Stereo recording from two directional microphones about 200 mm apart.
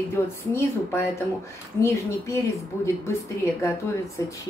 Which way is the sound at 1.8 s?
15° left (ahead or behind).